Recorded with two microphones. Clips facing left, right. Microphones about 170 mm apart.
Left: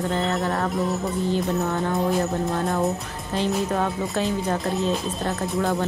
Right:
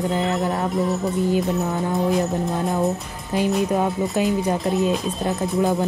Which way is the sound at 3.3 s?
10° right (ahead or behind).